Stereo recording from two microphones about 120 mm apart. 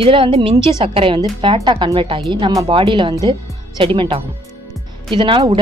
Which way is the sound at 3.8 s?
45° right (ahead or behind).